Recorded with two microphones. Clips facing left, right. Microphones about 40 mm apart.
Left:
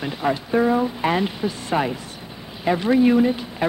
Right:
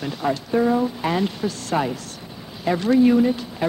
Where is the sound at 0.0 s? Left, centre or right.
Centre.